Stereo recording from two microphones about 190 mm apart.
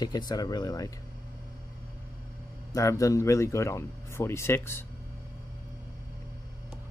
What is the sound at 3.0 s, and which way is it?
Speech, 15° left (ahead or behind).